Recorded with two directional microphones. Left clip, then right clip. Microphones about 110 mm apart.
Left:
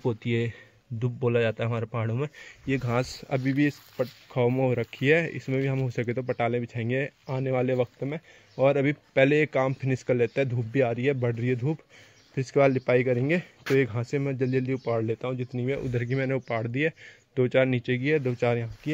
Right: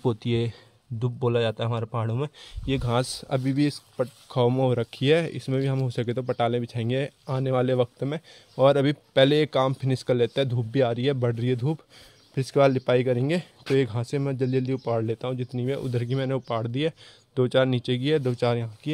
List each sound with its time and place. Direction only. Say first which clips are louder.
0.0 s speech: right 2 dB; 45° right (ahead or behind)
0.3 s a man's voice: right 1 dB; 30° right (ahead or behind)
0.9 s a man's voice: right 1 dB; 20° right (ahead or behind)